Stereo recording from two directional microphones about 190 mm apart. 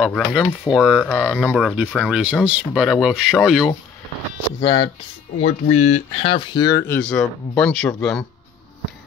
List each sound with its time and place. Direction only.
0.0 s speech: centre (ahead or behind)
4.6 s speech: 20° left (ahead or behind)
5.4 s speech: 35° left (ahead or behind); by 7.0 s 20° left (ahead or behind)
7.0 s speech: 5° left (ahead or behind)